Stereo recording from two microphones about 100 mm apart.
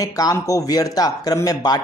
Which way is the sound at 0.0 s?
35° left (ahead or behind).